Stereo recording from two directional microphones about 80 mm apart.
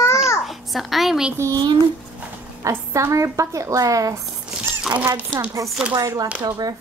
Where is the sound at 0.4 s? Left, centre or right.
Centre.